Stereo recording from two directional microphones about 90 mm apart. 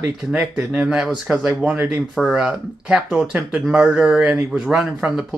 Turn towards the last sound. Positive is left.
turn(degrees=-5)  # may be behind; listen again after turning